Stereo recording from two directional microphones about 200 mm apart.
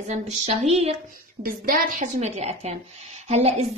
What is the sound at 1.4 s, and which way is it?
A woman's voice, 45° right (ahead or behind).